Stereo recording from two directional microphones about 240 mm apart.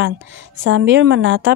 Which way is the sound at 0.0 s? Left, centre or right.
Right.